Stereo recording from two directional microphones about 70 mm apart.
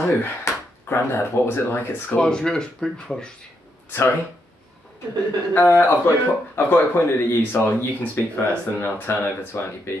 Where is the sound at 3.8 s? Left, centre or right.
Left.